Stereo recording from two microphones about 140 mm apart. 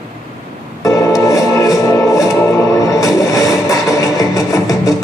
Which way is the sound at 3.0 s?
25° left (ahead or behind).